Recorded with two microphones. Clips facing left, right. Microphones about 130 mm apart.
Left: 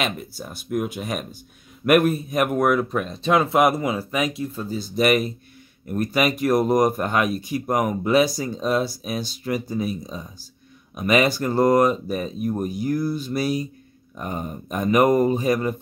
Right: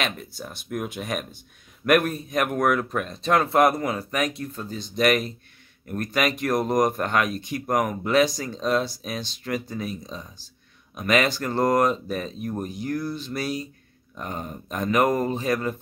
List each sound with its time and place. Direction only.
0.0 s speech: 5° left (ahead or behind)